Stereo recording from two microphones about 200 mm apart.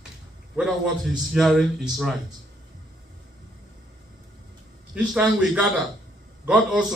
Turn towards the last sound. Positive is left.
turn(degrees=-5)  # may be behind; listen again after turning